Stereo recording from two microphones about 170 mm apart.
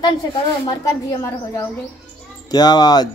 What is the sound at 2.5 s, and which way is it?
Speech, 25° left (ahead or behind).